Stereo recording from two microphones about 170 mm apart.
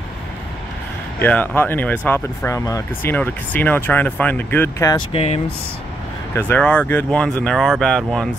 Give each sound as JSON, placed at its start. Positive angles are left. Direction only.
{"t": 1.2, "sound": "speech", "side_deg": 10}
{"t": 5.1, "sound": "speech", "side_deg": 40}
{"t": 6.3, "sound": "speech", "side_deg": 10}